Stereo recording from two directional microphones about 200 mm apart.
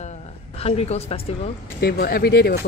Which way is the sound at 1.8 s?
50° left (ahead or behind).